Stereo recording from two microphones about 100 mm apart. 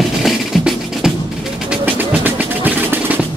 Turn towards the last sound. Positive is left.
turn(degrees=-20)  # may be behind; listen again after turning